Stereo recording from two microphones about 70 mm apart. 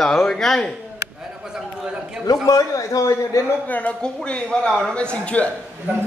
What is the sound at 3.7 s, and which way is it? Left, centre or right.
A man's voice, left.